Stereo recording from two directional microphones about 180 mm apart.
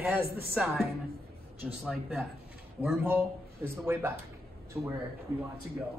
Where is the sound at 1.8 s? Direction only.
Centre (ahead or behind).